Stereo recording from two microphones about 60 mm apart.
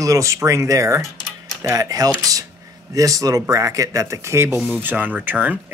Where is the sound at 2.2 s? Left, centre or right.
Right.